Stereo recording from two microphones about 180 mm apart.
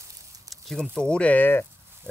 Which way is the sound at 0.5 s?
5° left (ahead or behind).